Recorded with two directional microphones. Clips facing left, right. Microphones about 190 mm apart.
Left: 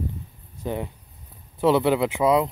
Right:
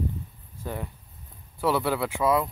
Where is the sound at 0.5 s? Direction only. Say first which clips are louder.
Left 5 dB; 20° left (ahead or behind).